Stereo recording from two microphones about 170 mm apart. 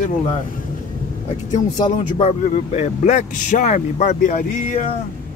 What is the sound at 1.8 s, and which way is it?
A man's voice, 30° left (ahead or behind).